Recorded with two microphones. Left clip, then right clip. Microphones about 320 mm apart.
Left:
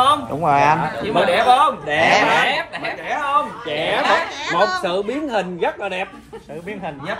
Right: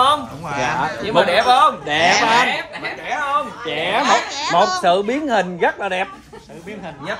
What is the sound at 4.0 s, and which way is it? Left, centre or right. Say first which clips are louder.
Speech: right 3 dB; centre.